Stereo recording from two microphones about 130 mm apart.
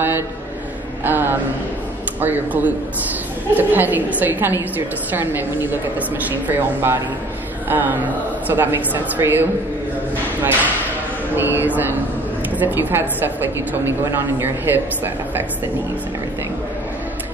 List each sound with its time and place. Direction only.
1.0 s a woman's voice: 15° right (ahead or behind)